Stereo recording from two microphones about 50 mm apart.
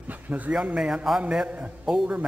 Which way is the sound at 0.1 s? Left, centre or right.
Right.